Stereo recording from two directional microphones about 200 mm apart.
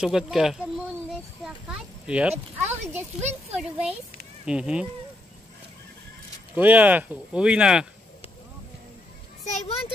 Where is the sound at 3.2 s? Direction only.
35° right (ahead or behind).